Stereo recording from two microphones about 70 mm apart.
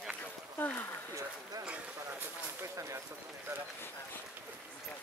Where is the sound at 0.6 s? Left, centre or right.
Left.